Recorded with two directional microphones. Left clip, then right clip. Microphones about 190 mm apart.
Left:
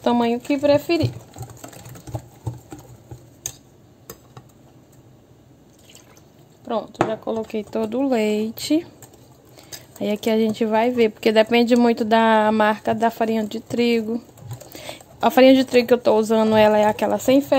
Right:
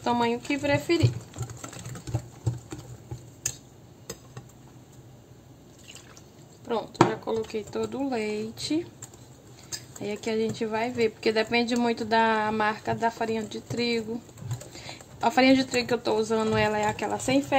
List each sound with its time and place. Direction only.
0.0 s speech: 45° left (ahead or behind)
7.2 s speech: 35° left (ahead or behind)
9.9 s speech: 50° left (ahead or behind)